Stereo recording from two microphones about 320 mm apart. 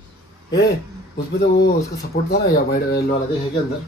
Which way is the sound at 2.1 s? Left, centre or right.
Left.